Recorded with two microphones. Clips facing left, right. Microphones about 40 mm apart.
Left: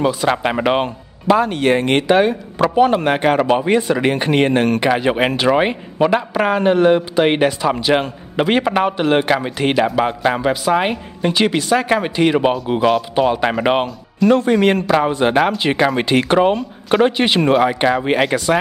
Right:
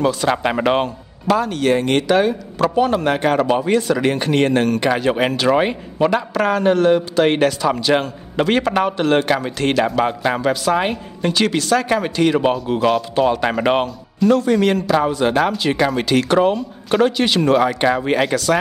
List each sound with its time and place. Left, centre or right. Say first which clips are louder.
0.0 s a man's voice: left 1 dB; centre
0.8 s a man's voice: left 3 dB; left; by 14.3 s centre
14.3 s a man's voice: left 2 dB; left